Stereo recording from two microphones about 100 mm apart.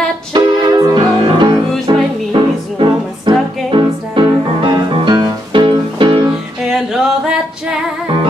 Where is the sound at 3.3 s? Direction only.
55° right (ahead or behind).